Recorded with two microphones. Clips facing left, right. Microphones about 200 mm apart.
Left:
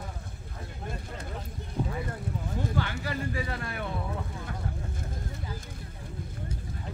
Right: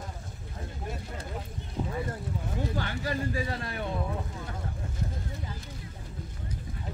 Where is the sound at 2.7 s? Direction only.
40° right (ahead or behind).